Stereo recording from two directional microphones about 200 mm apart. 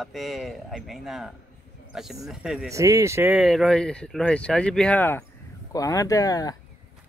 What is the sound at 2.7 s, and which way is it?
Speech, 15° right (ahead or behind).